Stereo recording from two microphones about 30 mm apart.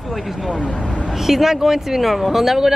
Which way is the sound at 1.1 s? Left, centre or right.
Centre.